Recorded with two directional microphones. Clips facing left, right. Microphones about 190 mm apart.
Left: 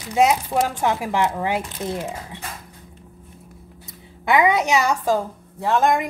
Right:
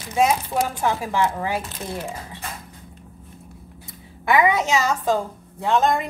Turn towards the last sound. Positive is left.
turn(degrees=10)  # may be behind; listen again after turning